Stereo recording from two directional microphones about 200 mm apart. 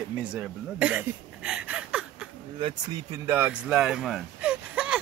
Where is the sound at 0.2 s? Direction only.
5° right (ahead or behind).